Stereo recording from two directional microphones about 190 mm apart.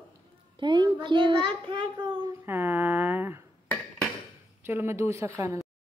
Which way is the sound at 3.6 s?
5° left (ahead or behind).